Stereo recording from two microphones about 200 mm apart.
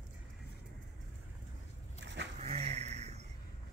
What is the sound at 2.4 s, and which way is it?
Vehicle, 30° right (ahead or behind).